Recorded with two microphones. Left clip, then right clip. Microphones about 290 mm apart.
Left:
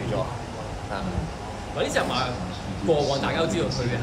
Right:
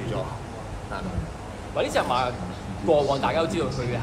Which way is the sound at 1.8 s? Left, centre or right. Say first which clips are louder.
Right 2 dB; centre.